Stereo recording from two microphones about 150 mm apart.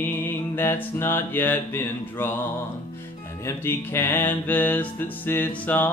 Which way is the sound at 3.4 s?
15° left (ahead or behind).